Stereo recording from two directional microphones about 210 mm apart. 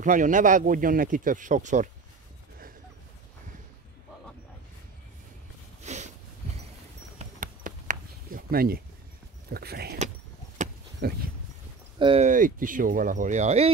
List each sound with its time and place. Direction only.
0.0 s speech: 40° right (ahead or behind)
5.8 s a sound: 35° right (ahead or behind)
7.2 s a sound: 40° right (ahead or behind)
9.5 s speech: 50° right (ahead or behind)
11.0 s speech: 45° right (ahead or behind)
12.0 s speech: 25° right (ahead or behind)
12.3 s speech: 40° right (ahead or behind)